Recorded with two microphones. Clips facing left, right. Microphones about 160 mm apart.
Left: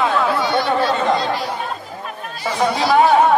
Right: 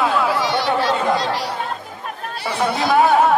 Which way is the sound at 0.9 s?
10° right (ahead or behind).